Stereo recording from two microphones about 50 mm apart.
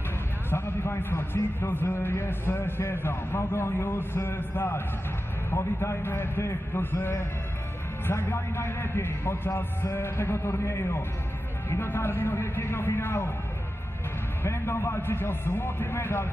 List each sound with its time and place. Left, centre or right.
0.5 s a man's voice: left
5.6 s a man's voice: left
11.9 s a man's voice: left
14.4 s a man's voice: left